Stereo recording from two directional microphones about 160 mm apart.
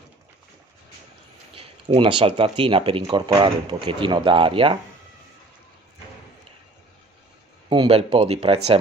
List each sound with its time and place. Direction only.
1.5 s speech: 35° right (ahead or behind)
7.7 s speech: 30° right (ahead or behind)